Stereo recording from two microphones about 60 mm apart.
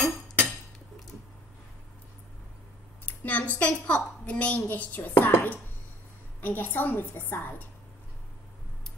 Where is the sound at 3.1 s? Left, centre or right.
Left.